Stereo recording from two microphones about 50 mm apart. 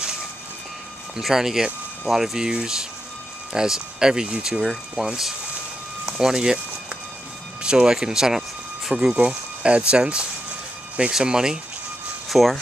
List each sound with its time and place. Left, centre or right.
1.1 s speech: centre
7.6 s speech: centre
12.3 s speech: centre